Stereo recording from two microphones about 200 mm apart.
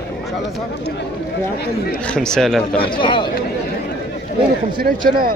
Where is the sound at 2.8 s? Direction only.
25° left (ahead or behind).